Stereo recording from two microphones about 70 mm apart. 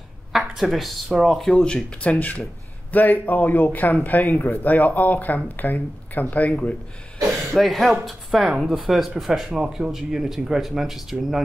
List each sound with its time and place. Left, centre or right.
0.3 s speech: centre
7.5 s speech: centre